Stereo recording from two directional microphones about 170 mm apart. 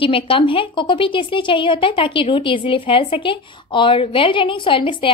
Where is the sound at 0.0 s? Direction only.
30° left (ahead or behind).